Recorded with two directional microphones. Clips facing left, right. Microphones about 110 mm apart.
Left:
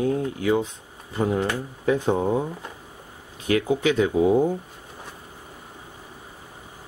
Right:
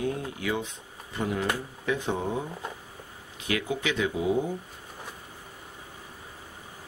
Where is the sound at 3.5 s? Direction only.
35° left (ahead or behind).